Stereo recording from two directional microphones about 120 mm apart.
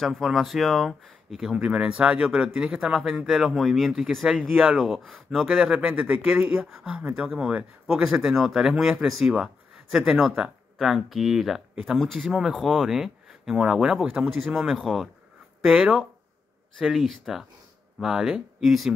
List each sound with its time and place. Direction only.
0.0 s speech: centre (ahead or behind)